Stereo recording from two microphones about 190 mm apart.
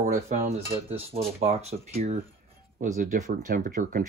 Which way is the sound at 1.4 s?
35° right (ahead or behind).